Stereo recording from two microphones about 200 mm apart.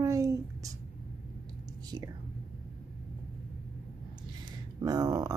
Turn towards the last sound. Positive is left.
turn(degrees=-20)  # may be behind; listen again after turning